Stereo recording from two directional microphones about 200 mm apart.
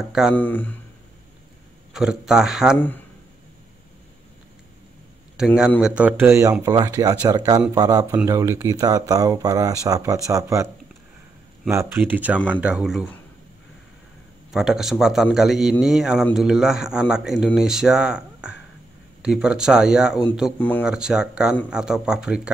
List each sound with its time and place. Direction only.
0.3 s speech: 10° left (ahead or behind)
2.0 s speech: 5° right (ahead or behind)
5.8 s speech: 5° right (ahead or behind)
11.7 s speech: 15° right (ahead or behind)
14.5 s speech: centre (ahead or behind)
20.5 s speech: 10° left (ahead or behind)
20.8 s speech: 5° right (ahead or behind)